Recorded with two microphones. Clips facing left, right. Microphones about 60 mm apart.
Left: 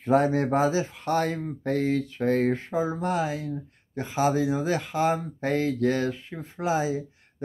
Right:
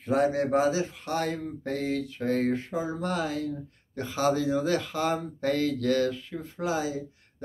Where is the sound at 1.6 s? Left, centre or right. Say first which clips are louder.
Left 6 dB; left.